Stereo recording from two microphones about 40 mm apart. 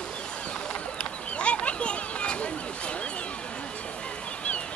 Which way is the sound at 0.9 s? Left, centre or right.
Left.